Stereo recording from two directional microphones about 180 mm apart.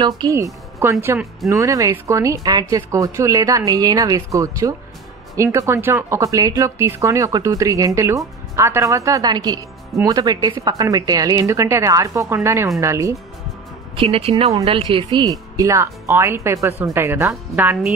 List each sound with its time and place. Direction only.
0.2 s speech: 20° right (ahead or behind)
13.9 s speech: 30° right (ahead or behind); by 17.9 s 10° right (ahead or behind)